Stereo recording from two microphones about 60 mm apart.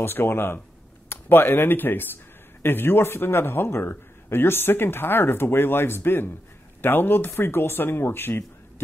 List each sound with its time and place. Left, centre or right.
0.0 s speech: left